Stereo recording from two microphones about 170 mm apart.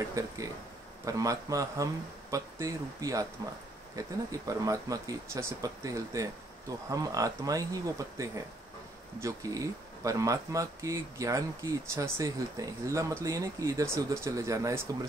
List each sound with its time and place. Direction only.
0.0 s speech: 20° right (ahead or behind)